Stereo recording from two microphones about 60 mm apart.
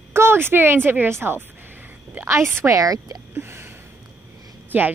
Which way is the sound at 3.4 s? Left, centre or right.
Right.